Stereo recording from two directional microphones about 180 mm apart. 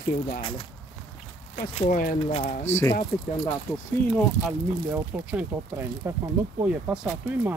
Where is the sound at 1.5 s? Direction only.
45° left (ahead or behind).